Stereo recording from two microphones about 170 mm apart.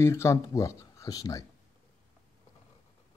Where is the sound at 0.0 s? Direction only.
15° left (ahead or behind).